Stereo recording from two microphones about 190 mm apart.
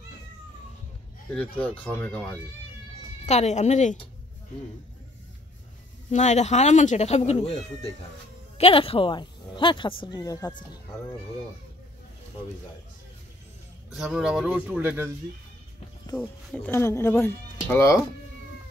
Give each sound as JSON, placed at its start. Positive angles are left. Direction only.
{"t": 1.3, "sound": "speech", "side_deg": 10}
{"t": 3.3, "sound": "speech", "side_deg": 35}
{"t": 6.1, "sound": "speech", "side_deg": 35}
{"t": 13.8, "sound": "a man's voice", "side_deg": -5}
{"t": 16.2, "sound": "speech", "side_deg": 10}